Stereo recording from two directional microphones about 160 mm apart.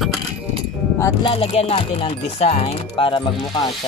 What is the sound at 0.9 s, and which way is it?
Speech, 20° left (ahead or behind).